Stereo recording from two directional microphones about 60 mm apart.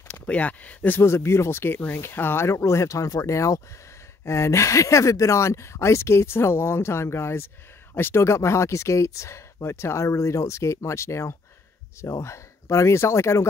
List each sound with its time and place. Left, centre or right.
0.1 s speech: left
0.9 s speech: left